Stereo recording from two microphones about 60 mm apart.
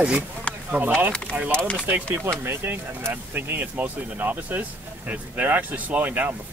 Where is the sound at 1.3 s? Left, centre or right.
Right.